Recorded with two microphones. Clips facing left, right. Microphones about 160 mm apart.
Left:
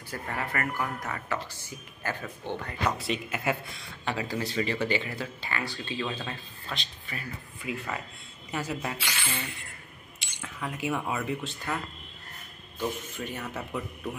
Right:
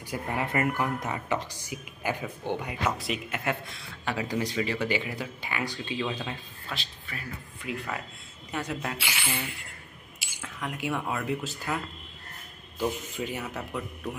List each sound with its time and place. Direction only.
0.1 s a woman's voice: 15° right (ahead or behind)
3.0 s a man's voice: centre (ahead or behind)
4.3 s a woman's voice: 15° right (ahead or behind)
12.8 s a man's voice: 10° right (ahead or behind)